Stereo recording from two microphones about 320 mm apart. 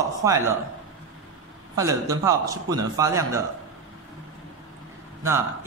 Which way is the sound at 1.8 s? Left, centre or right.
Centre.